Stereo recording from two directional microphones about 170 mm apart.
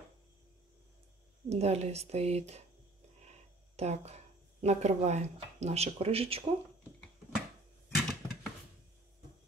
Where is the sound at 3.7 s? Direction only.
40° right (ahead or behind).